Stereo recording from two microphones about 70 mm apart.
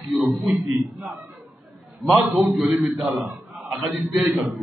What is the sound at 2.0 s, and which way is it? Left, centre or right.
A man's voice, centre.